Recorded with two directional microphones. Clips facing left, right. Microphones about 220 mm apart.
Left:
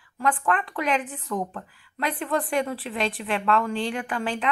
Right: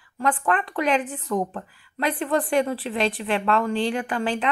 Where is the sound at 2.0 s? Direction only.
Centre (ahead or behind).